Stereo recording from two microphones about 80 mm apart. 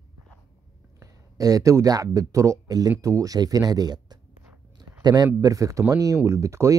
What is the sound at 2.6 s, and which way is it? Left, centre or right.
Speech, right.